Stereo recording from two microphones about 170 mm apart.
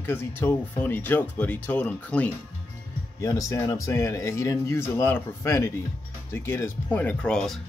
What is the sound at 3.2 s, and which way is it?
Speech, 20° left (ahead or behind).